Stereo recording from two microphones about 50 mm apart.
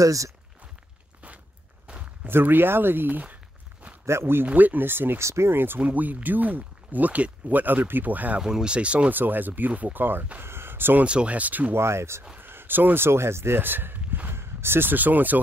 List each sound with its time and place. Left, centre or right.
2.2 s speech: right
4.0 s speech: right
4.5 s speech: right
5.2 s speech: right
5.8 s speech: right
8.4 s speech: centre
9.1 s speech: right
10.4 s a sound: right
11.1 s speech: right
11.7 s speech: right
12.4 s speech: right
13.6 s speech: right
14.3 s speech: right